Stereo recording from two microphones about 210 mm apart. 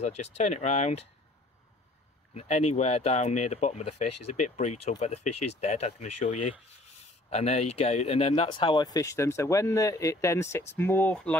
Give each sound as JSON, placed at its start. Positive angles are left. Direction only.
{"t": 0.0, "sound": "speech", "side_deg": 30}
{"t": 2.3, "sound": "speech", "side_deg": 30}